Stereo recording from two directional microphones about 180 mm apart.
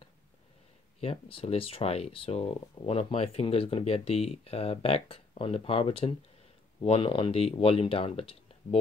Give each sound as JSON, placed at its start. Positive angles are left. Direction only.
{"t": 1.0, "sound": "speech", "side_deg": 30}